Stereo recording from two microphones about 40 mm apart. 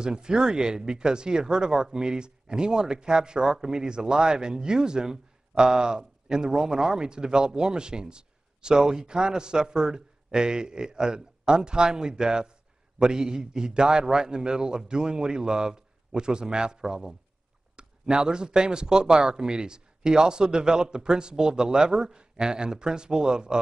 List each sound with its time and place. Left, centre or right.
0.0 s a man's voice: centre